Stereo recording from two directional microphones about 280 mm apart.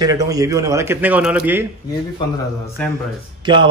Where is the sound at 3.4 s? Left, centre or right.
Centre.